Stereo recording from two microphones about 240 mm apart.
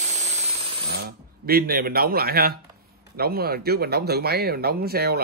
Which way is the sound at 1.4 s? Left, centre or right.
Right.